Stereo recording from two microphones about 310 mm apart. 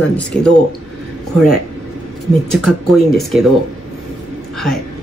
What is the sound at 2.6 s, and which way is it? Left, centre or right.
Speech, centre.